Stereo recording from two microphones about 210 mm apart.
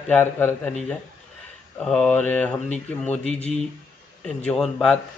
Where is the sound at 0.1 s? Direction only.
10° left (ahead or behind).